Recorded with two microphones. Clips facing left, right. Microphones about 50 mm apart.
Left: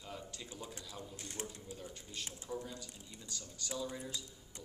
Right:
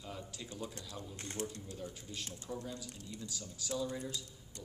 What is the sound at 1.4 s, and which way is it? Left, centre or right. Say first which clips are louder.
Speech: right 4 dB; centre.